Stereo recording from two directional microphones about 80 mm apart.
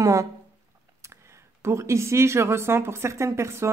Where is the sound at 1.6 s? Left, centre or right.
Right.